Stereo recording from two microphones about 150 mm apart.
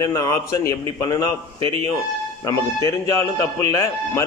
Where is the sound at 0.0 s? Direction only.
20° left (ahead or behind).